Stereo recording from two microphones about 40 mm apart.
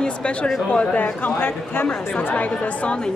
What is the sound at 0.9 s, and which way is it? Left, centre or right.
Speech, left.